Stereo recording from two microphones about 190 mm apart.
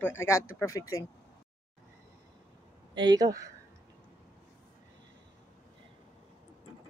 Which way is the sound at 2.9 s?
20° right (ahead or behind).